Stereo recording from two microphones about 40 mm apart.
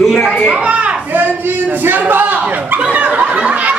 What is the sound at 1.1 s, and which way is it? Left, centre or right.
Speech, right.